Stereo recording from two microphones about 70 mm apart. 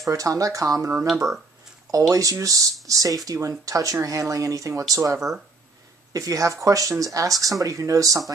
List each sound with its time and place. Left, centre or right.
0.1 s speech: right
1.0 s speech: centre
1.9 s speech: right